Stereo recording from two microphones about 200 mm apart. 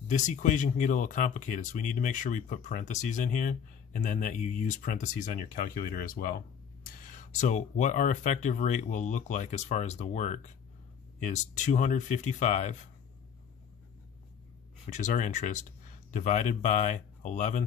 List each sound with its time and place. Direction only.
0.1 s speech: 40° left (ahead or behind)
7.1 s speech: 40° left (ahead or behind)
14.9 s speech: 35° left (ahead or behind)